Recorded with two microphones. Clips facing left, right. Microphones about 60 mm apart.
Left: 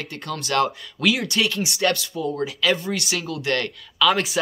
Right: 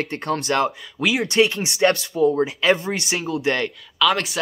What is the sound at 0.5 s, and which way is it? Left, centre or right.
Speech, centre.